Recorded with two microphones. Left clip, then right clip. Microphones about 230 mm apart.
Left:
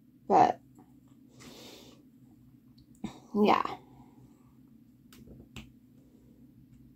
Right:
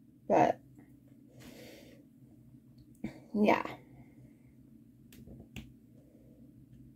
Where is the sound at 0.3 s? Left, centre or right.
Left.